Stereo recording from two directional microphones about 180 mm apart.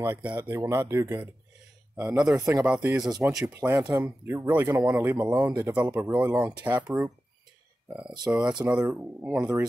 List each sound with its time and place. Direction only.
0.0 s speech: 10° right (ahead or behind)
2.1 s speech: 5° right (ahead or behind)
8.3 s speech: 5° right (ahead or behind)